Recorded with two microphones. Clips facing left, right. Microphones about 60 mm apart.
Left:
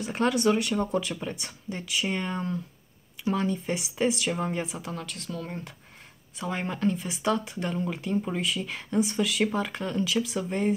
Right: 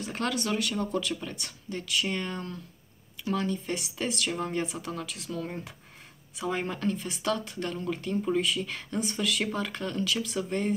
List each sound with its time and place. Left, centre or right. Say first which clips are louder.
0.0 s speech: left 6 dB; centre